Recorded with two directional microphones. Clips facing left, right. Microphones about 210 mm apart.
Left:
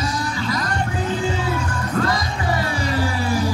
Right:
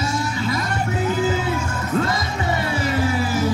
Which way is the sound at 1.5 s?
25° right (ahead or behind).